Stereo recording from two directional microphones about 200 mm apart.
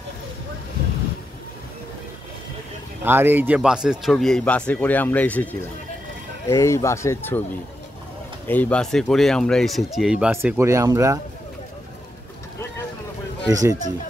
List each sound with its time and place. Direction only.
3.0 s speech: 10° right (ahead or behind); by 7.4 s 10° left (ahead or behind)
8.5 s speech: 10° left (ahead or behind); by 11.1 s 15° right (ahead or behind)
13.5 s speech: 15° right (ahead or behind)